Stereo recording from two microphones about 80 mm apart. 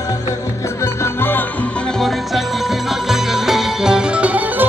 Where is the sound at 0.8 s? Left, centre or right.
Left.